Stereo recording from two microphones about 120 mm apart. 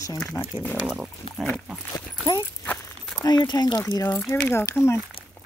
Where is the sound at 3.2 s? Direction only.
35° left (ahead or behind).